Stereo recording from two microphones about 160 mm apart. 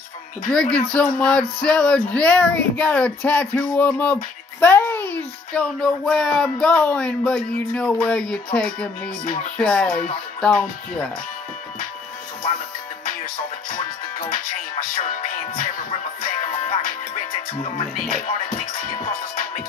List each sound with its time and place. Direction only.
0.5 s speech: 5° left (ahead or behind)
9.2 s music: 55° left (ahead or behind)
9.6 s speech: 5° left (ahead or behind)
16.2 s music: 55° left (ahead or behind)
17.7 s music: 40° left (ahead or behind)